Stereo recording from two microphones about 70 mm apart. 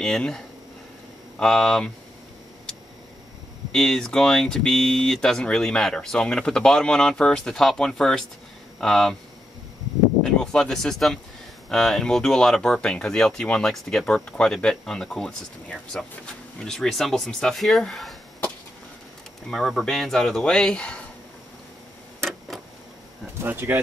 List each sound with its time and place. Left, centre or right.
0.0 s speech: centre
1.4 s speech: centre
3.7 s speech: centre
10.2 s speech: centre
19.5 s speech: centre
22.5 s a sound: centre
23.4 s speech: right